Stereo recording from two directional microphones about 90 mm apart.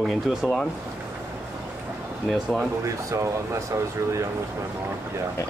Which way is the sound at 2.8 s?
35° right (ahead or behind).